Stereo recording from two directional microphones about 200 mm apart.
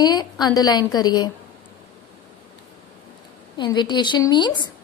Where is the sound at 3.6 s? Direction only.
20° left (ahead or behind).